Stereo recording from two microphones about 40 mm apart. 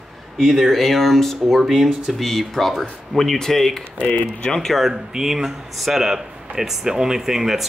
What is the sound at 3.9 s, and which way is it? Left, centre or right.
Speech, left.